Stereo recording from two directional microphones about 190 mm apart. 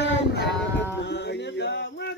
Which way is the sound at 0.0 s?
60° left (ahead or behind).